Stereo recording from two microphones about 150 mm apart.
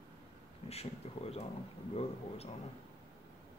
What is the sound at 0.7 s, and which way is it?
Speech, 40° left (ahead or behind).